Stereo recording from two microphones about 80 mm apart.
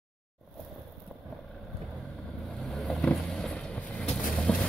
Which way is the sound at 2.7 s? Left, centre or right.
Centre.